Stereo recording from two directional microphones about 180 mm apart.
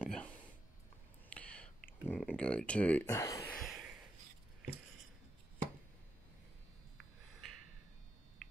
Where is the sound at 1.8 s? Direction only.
10° left (ahead or behind).